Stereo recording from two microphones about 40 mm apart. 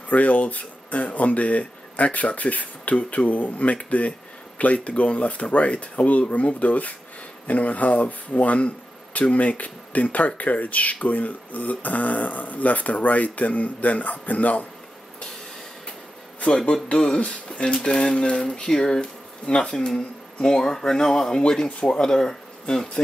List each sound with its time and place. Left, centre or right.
0.1 s speech: left
16.3 s speech: left; by 21.4 s centre
21.4 s speech: left